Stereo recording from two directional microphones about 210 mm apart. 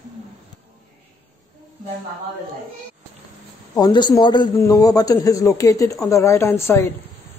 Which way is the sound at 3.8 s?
20° left (ahead or behind).